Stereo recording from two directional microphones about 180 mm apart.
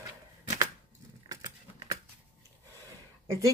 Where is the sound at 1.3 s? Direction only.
20° right (ahead or behind).